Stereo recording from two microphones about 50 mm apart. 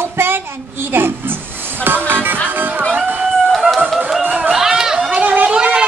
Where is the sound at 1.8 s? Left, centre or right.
Right.